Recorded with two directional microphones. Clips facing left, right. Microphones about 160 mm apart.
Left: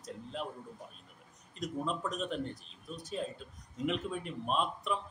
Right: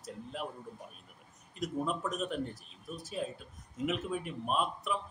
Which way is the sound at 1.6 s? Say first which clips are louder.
Right 1 dB; 5° right (ahead or behind).